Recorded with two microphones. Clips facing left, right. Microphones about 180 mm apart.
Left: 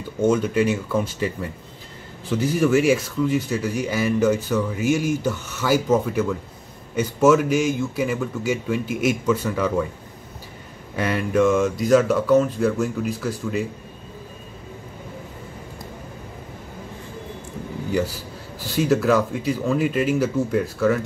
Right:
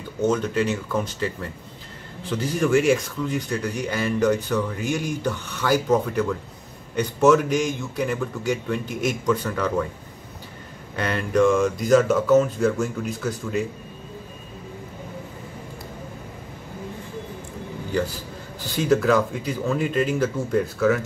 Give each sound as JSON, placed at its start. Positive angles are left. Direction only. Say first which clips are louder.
{"t": 0.2, "sound": "speech", "louder": "left 3 dB", "side_deg": 10}
{"t": 11.0, "sound": "speech", "louder": "left 1 dB", "side_deg": 10}
{"t": 18.8, "sound": "speech", "louder": "left 1 dB", "side_deg": 5}